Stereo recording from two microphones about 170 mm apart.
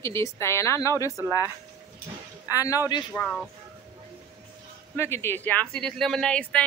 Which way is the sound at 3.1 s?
5° left (ahead or behind).